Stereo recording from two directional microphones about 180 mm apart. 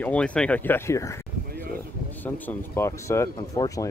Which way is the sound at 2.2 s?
10° left (ahead or behind).